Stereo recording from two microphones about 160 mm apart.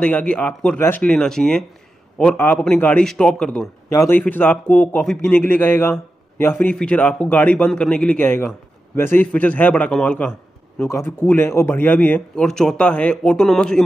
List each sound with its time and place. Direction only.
0.0 s a man's voice: 5° left (ahead or behind)
3.9 s a man's voice: 20° left (ahead or behind)